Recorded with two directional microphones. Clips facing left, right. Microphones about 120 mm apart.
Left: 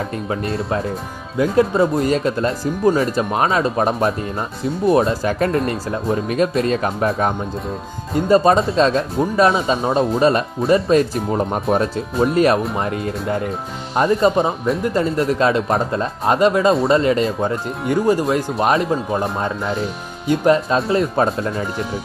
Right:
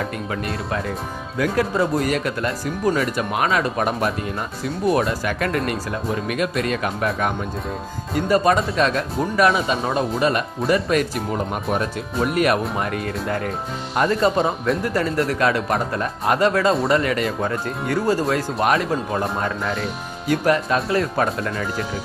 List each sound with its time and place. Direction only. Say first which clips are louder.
0.3 s speech: left 4 dB; 30° left (ahead or behind)